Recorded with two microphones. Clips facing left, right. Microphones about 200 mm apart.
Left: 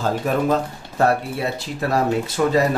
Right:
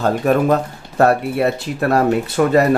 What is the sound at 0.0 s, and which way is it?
Speech, 65° right (ahead or behind).